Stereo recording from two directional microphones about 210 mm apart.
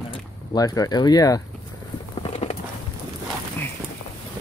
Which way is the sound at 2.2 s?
30° left (ahead or behind).